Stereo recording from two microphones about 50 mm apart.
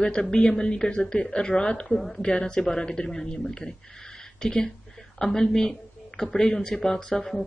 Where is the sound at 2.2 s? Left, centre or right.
Centre.